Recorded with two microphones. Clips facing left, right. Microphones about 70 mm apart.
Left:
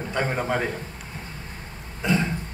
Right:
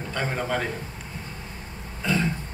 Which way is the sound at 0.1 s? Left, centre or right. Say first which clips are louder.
Left 2 dB; centre.